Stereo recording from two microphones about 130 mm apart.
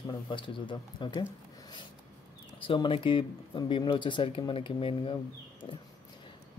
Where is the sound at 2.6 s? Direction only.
40° left (ahead or behind).